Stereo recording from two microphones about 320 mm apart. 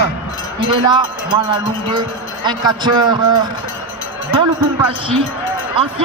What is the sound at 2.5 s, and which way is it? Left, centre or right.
Speech, centre.